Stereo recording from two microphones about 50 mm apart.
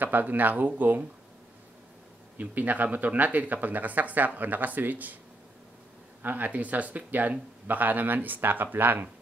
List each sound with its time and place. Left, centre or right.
0.0 s speech: right
2.3 s speech: right
6.2 s speech: right